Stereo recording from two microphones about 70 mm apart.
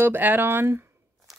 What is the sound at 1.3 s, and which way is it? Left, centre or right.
Crunch, centre.